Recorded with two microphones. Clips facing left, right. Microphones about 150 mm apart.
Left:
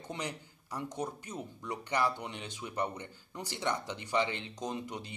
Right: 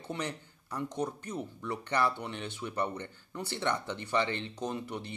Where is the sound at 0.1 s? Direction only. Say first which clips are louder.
Right 3 dB; 15° left (ahead or behind).